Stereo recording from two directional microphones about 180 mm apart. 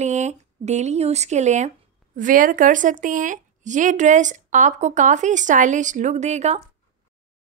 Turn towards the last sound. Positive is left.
turn(degrees=-40)  # may be behind; listen again after turning